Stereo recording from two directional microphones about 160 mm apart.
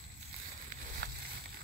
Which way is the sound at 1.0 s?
75° right (ahead or behind).